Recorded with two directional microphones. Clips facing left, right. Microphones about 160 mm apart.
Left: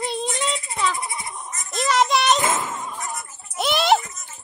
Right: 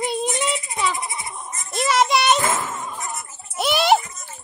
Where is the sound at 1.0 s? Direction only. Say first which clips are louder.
Even; 20° right (ahead or behind).